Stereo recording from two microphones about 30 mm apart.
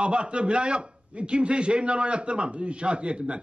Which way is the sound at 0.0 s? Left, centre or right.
Right.